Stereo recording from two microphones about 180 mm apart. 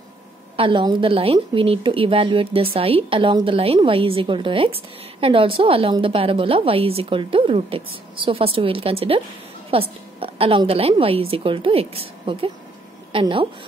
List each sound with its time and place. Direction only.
0.6 s a woman's voice: 30° right (ahead or behind)